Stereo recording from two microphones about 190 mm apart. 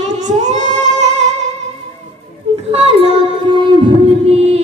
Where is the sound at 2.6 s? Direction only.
30° right (ahead or behind).